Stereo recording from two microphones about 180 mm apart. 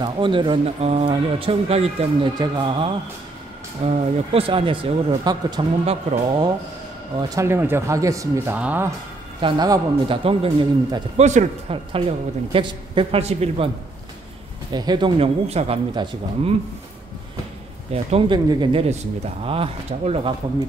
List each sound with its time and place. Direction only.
0.0 s speech: 25° right (ahead or behind)
5.9 s speech: 35° right (ahead or behind)
7.2 s speech: 20° right (ahead or behind)
9.4 s speech: 25° right (ahead or behind)
14.7 s speech: 25° right (ahead or behind)
15.9 s speech: 25° right (ahead or behind)
17.9 s speech: 35° right (ahead or behind)